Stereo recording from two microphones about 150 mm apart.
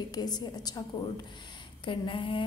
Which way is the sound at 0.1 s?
25° left (ahead or behind).